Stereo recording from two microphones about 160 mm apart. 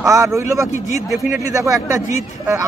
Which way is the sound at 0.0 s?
20° right (ahead or behind).